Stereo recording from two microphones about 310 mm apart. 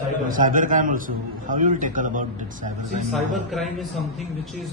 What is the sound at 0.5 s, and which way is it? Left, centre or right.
A man's voice, right.